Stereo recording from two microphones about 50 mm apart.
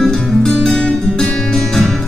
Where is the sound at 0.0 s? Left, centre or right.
Centre.